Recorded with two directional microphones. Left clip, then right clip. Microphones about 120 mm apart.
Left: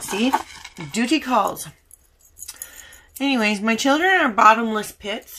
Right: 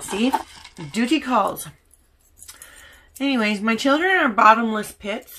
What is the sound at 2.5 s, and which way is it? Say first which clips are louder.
Speech: left 2 dB; 20° left (ahead or behind).